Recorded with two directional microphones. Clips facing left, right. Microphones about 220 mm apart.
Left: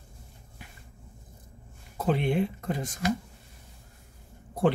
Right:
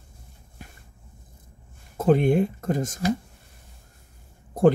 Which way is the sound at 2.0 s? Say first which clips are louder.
Right 7 dB; 45° right (ahead or behind).